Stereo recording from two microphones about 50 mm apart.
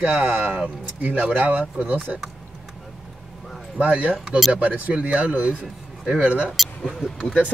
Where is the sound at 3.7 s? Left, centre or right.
Right.